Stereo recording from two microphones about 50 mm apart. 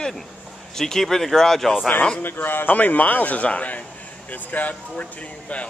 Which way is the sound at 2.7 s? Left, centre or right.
Left.